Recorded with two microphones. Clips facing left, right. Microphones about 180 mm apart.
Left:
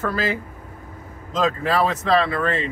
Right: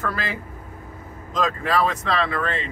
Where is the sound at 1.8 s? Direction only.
40° left (ahead or behind).